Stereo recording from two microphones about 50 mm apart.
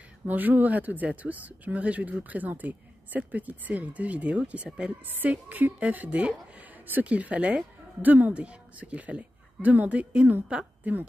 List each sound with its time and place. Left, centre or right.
0.3 s speech: right
8.0 s a woman's voice: right